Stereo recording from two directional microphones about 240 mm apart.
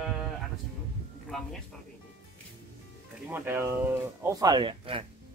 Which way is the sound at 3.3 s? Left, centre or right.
Centre.